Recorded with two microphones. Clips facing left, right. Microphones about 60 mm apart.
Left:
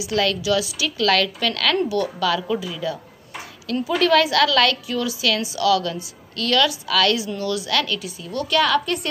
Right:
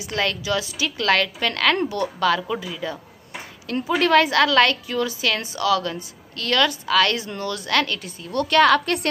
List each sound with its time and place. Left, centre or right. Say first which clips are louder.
0.0 s a woman's voice: left 3 dB; right
2.4 s a woman's voice: left 3 dB; centre; by 9.1 s right